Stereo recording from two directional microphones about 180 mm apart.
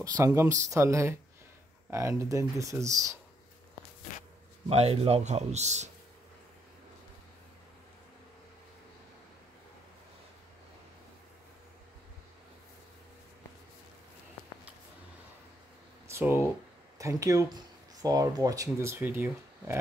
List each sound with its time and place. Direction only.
0.0 s speech: 15° right (ahead or behind)
4.6 s a man's voice: 35° right (ahead or behind)
16.1 s speech: 15° right (ahead or behind)